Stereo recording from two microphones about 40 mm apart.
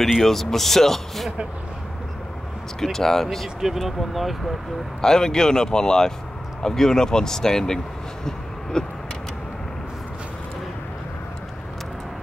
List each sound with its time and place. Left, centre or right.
0.0 s speech: centre
2.8 s speech: centre
3.6 s speech: centre
5.0 s speech: centre